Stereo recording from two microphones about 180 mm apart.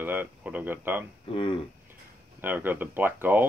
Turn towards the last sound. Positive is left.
turn(degrees=-10)  # may be behind; listen again after turning